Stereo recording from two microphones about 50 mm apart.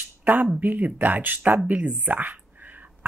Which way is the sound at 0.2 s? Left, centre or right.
Right.